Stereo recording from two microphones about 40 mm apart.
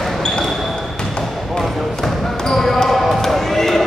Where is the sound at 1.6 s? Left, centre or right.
Centre.